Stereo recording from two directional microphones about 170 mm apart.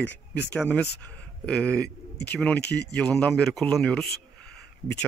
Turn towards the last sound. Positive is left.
turn(degrees=70)  # may be behind; listen again after turning